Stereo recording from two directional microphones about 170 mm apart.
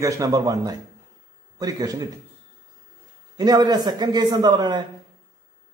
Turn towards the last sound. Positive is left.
turn(degrees=-25)  # may be behind; listen again after turning